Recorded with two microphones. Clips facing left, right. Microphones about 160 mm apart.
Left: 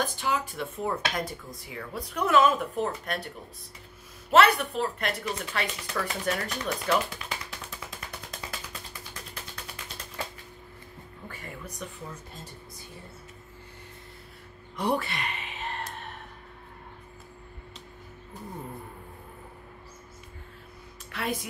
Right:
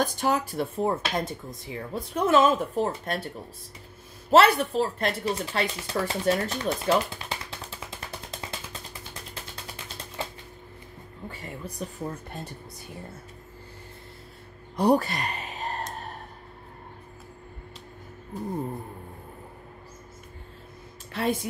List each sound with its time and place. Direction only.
0.0 s speech: 40° right (ahead or behind)
4.3 s speech: 30° right (ahead or behind)
11.2 s speech: 30° right (ahead or behind)
12.0 s speech: 55° right (ahead or behind)
14.8 s a sound: 40° right (ahead or behind)
21.1 s speech: 30° right (ahead or behind)